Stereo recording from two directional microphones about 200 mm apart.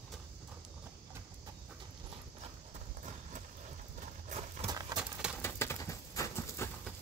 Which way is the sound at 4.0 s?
40° right (ahead or behind).